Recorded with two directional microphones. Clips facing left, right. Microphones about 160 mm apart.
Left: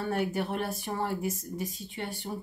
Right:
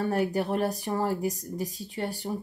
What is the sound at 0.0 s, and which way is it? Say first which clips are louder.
Speech: right 3 dB; 40° right (ahead or behind).